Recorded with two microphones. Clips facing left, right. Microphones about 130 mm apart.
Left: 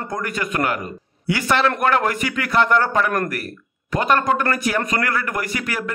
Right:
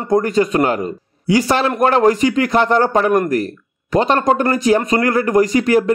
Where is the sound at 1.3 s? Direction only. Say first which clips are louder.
Right 5 dB; 35° right (ahead or behind).